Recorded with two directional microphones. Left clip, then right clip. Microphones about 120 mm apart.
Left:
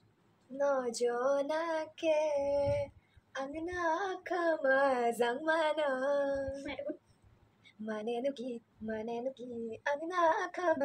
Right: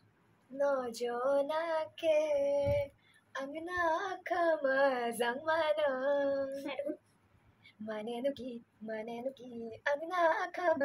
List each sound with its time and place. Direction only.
0.6 s child singing: 30° left (ahead or behind)
6.5 s speech: 25° right (ahead or behind)
7.8 s child singing: 40° left (ahead or behind)